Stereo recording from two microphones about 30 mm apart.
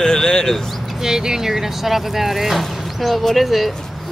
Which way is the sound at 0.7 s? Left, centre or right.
Centre.